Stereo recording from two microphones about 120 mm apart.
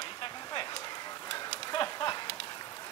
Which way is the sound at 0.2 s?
40° left (ahead or behind).